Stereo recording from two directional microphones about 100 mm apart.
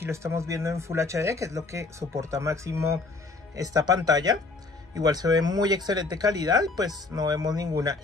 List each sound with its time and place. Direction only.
0.0 s speech: 25° right (ahead or behind)